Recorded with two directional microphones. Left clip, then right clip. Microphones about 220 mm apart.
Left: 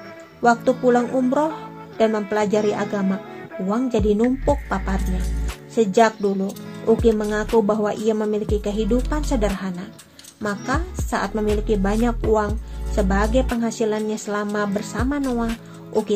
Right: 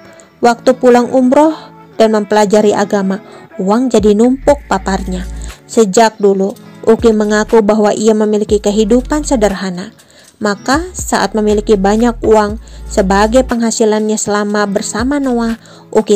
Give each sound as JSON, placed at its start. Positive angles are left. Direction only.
{"t": 0.4, "sound": "speech", "side_deg": -40}